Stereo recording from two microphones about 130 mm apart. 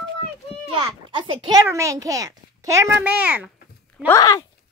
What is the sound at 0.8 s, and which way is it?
Speech, 40° right (ahead or behind).